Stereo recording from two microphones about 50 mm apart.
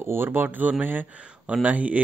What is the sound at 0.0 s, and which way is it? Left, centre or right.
Speech, right.